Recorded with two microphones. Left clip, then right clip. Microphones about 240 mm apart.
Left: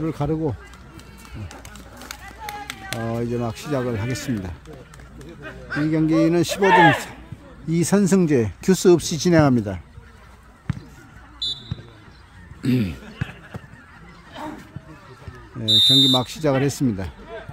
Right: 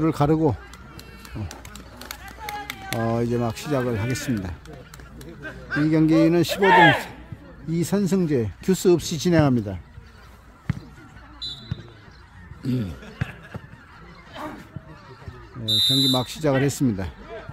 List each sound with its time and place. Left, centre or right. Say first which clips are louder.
0.0 s a sound: right 4 dB; right
2.4 s run: even; centre
3.0 s speech: right 2 dB; centre
7.7 s speech: left 5 dB; centre
10.7 s a sound: even; centre
12.6 s speech: left 6 dB; left
15.6 s speech: left 5 dB; centre